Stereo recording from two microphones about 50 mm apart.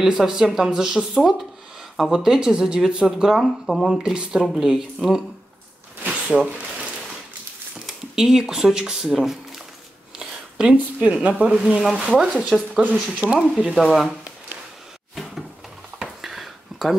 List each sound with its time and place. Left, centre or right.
0.0 s speech: centre
6.0 s a sound: right
7.8 s speech: centre
10.1 s speech: centre
11.6 s speech: centre
12.0 s speech: centre
13.7 s speech: centre
16.2 s a sound: centre